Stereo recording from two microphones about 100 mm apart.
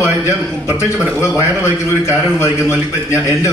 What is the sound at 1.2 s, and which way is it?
A man's voice, 25° left (ahead or behind).